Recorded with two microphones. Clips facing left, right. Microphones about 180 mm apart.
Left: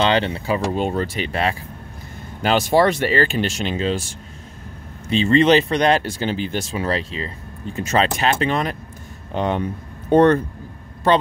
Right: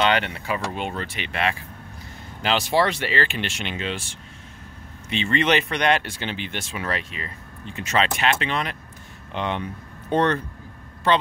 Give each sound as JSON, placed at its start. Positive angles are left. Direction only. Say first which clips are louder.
{"t": 0.0, "sound": "speech", "louder": "left 3 dB", "side_deg": 30}
{"t": 2.4, "sound": "a man's voice", "louder": "left 5 dB", "side_deg": 45}